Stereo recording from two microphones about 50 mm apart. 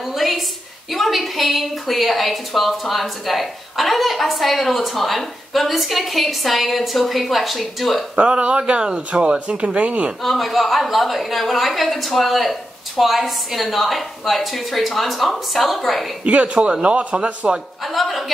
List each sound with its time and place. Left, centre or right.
0.0 s a sound: centre
0.9 s a woman's voice: centre
8.2 s speech: right
10.2 s a woman's voice: centre
16.3 s speech: right
17.8 s a woman's voice: centre